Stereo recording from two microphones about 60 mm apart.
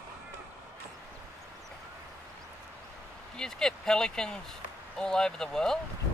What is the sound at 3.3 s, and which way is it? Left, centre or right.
Speech, centre.